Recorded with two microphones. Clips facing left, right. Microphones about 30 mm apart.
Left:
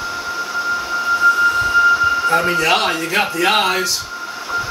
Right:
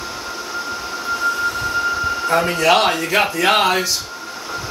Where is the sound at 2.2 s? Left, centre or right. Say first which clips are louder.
Left 1 dB; centre.